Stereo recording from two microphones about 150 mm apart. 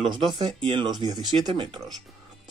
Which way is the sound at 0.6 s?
30° right (ahead or behind).